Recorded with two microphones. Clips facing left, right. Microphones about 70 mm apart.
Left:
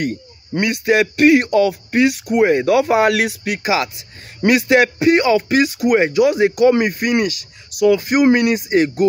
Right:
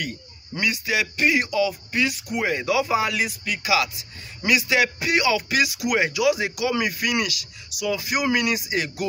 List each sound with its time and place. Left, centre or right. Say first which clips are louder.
0.0 s speech: left 9 dB; left
3.5 s a man's voice: left 2 dB; left